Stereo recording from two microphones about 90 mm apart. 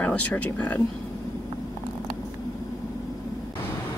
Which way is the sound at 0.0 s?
15° left (ahead or behind).